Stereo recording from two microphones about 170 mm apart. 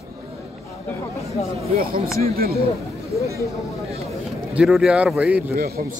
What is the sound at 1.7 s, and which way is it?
Speech, 60° right (ahead or behind).